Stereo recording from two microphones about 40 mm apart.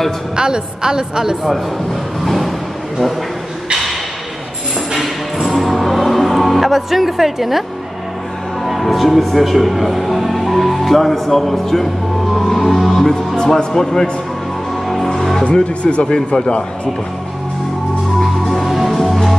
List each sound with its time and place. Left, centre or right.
0.4 s a woman's voice: centre
2.2 s a sound: centre
4.9 s music: centre
8.6 s speech: centre
13.4 s speech: centre
14.9 s music: centre
15.4 s speech: left
18.2 s music: centre